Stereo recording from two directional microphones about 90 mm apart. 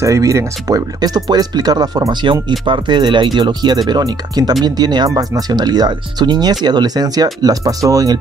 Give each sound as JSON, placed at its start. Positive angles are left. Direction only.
{"t": 0.0, "sound": "speech", "side_deg": -35}
{"t": 2.6, "sound": "speech", "side_deg": -60}